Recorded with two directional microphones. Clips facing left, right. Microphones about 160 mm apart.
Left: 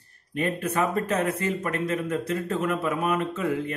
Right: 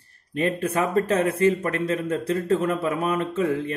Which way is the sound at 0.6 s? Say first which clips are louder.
Right 3 dB; 30° right (ahead or behind).